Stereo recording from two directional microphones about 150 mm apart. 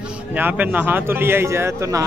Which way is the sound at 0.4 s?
10° right (ahead or behind).